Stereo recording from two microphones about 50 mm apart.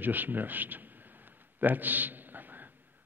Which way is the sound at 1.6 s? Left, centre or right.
Right.